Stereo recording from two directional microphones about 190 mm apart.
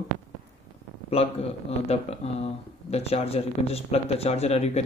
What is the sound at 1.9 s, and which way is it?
Speech, 35° left (ahead or behind).